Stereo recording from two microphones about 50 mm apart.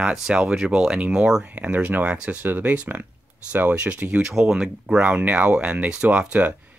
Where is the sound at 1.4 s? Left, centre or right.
Right.